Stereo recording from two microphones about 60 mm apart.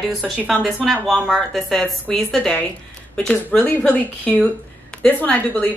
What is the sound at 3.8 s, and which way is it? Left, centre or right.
Speech, left.